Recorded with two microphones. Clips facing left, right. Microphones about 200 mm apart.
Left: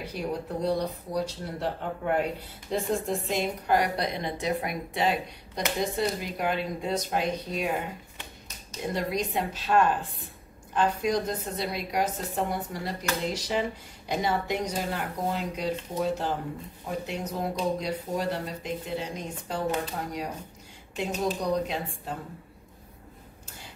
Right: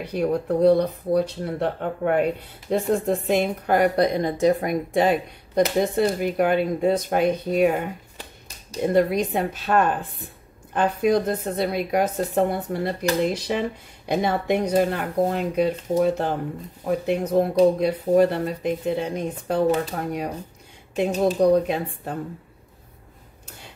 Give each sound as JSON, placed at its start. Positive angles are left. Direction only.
{"t": 0.0, "sound": "a woman's voice", "side_deg": -60}
{"t": 8.9, "sound": "a woman's voice", "side_deg": -55}